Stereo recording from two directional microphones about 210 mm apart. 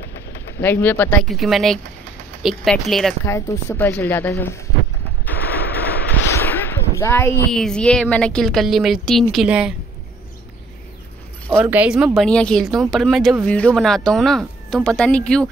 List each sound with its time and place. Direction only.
0.6 s speech: 10° left (ahead or behind)
3.3 s speech: 15° left (ahead or behind)
6.3 s speech: 10° left (ahead or behind)
11.5 s speech: 10° right (ahead or behind)